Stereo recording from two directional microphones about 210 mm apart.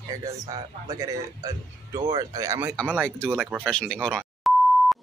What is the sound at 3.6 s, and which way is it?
Speech, 5° left (ahead or behind).